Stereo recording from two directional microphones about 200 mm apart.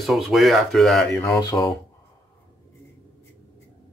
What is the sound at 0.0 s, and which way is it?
Speech, centre (ahead or behind).